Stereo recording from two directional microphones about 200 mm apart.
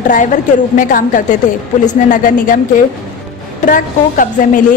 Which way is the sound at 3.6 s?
40° left (ahead or behind).